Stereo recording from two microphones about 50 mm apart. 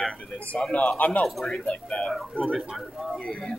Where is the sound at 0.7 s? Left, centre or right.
Centre.